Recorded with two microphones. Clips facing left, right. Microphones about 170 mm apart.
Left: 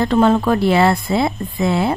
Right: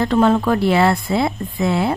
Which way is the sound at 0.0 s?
25° left (ahead or behind).